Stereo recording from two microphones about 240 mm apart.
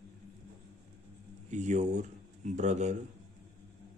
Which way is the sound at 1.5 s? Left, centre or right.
Right.